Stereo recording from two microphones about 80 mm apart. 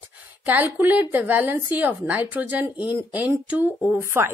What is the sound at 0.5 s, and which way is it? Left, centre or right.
Speech, right.